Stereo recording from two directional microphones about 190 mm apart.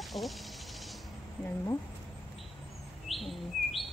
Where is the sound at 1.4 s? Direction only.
15° left (ahead or behind).